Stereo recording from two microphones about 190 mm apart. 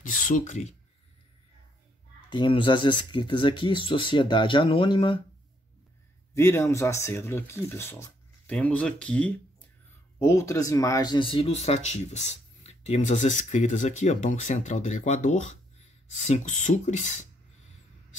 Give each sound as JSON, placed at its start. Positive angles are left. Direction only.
{"t": 0.0, "sound": "speech", "side_deg": 45}
{"t": 2.2, "sound": "speech", "side_deg": 25}
{"t": 6.3, "sound": "speech", "side_deg": 10}